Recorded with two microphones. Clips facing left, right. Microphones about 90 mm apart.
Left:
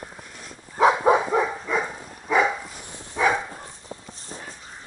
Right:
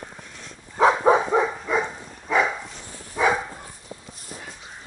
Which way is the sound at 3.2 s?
5° right (ahead or behind).